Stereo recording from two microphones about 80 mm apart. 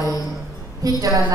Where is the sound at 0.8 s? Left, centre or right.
Right.